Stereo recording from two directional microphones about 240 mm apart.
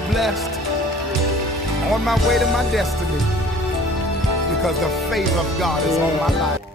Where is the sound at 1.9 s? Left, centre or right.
Centre.